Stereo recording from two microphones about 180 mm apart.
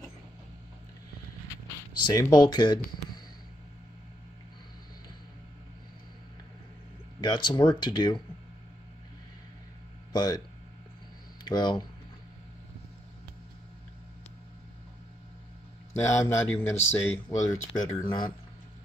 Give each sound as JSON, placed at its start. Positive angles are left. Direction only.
{"t": 2.0, "sound": "speech", "side_deg": 20}
{"t": 7.2, "sound": "speech", "side_deg": 25}
{"t": 10.1, "sound": "speech", "side_deg": 20}
{"t": 11.4, "sound": "speech", "side_deg": 25}
{"t": 16.0, "sound": "speech", "side_deg": 15}